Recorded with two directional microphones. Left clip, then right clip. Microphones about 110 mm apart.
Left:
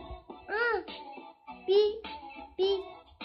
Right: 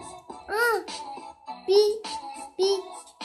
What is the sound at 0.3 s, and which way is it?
Music, 25° right (ahead or behind).